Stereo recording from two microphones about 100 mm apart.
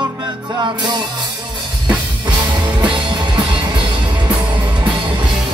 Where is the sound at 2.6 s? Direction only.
50° right (ahead or behind).